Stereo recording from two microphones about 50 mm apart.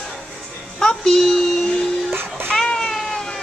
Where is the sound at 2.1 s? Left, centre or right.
Right.